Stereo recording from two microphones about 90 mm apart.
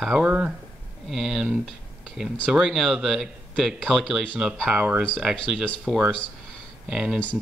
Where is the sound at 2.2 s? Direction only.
5° right (ahead or behind).